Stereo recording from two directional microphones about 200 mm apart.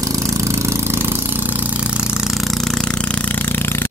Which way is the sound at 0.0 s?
15° right (ahead or behind).